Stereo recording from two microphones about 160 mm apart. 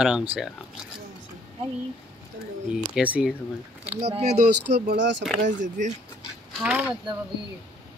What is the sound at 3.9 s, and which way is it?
Speech, 40° right (ahead or behind).